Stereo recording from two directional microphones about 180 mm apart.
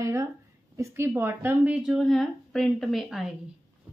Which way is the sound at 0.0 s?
15° right (ahead or behind).